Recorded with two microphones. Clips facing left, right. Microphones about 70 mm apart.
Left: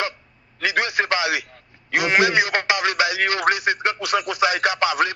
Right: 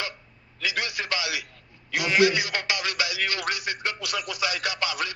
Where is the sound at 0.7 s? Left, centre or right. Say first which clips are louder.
Left 8 dB; left.